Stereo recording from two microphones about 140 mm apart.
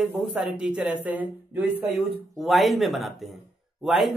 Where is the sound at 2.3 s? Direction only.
Centre (ahead or behind).